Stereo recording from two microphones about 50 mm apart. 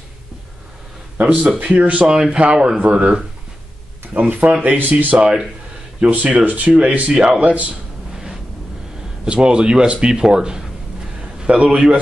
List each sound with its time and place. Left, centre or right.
1.1 s speech: right
4.9 s speech: right
9.2 s speech: centre
11.1 s a sound: right